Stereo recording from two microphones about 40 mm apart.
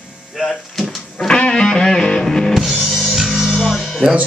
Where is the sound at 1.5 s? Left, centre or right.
Centre.